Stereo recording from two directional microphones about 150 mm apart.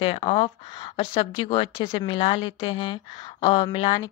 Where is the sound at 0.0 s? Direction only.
40° left (ahead or behind).